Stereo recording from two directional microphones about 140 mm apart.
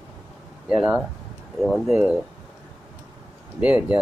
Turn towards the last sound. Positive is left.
turn(degrees=-10)  # may be behind; listen again after turning